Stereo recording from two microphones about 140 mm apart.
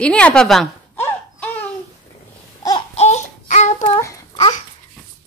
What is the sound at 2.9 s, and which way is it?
Child singing, 55° left (ahead or behind).